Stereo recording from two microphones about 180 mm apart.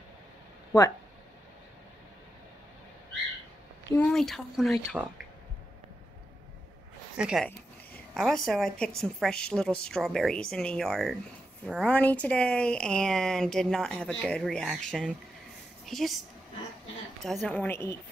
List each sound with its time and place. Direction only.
3.9 s a woman's voice: centre (ahead or behind)
7.2 s a woman's voice: 5° right (ahead or behind)
17.2 s a woman's voice: centre (ahead or behind)